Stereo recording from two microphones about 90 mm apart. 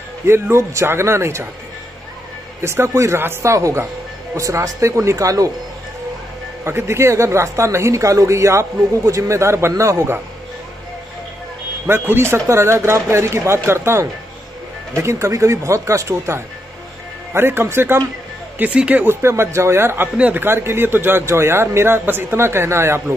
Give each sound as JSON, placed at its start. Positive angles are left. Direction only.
{"t": 0.3, "sound": "speech", "side_deg": -30}
{"t": 2.6, "sound": "a man's voice", "side_deg": -30}
{"t": 6.6, "sound": "a man's voice", "side_deg": -30}
{"t": 11.8, "sound": "a man's voice", "side_deg": -25}
{"t": 18.6, "sound": "speech", "side_deg": -15}
{"t": 19.0, "sound": "speech", "side_deg": -30}